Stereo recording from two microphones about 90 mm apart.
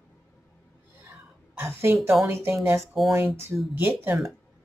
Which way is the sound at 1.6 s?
25° right (ahead or behind).